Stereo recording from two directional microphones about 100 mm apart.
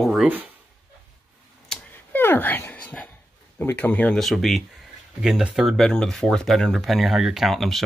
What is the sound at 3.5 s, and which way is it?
Speech, 20° left (ahead or behind).